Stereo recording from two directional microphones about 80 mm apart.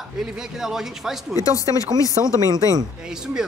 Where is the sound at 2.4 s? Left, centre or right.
Right.